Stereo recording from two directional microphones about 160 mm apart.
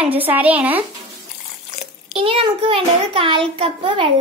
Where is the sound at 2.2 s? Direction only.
35° right (ahead or behind).